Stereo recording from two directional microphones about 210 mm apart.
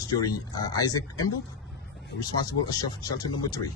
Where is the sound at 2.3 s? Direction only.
20° left (ahead or behind).